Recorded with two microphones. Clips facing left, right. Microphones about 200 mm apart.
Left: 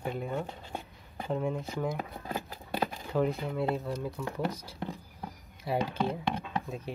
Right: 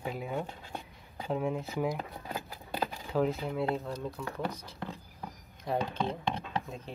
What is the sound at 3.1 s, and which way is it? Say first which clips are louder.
Speech: even; centre (ahead or behind).